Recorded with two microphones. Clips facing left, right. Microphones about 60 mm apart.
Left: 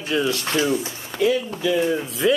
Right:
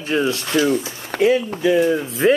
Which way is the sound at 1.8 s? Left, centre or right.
Centre.